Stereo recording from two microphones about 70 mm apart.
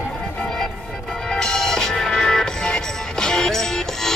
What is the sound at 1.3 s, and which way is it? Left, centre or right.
Music, centre.